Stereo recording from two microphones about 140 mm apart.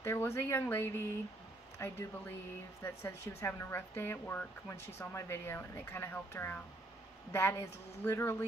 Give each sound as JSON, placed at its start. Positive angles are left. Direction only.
{"t": 0.0, "sound": "speech", "side_deg": 20}